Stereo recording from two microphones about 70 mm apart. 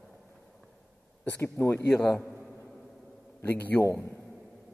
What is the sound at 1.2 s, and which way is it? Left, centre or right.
Speech, left.